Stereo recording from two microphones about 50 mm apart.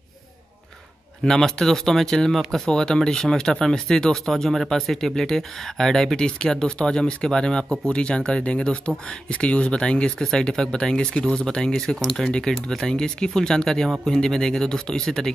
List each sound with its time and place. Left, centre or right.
1.2 s speech: centre